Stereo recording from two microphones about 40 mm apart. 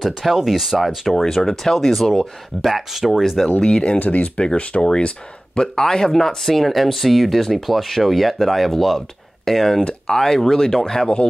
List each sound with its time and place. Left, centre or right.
0.0 s speech: centre
1.1 s speech: centre
4.0 s speech: left; by 11.1 s centre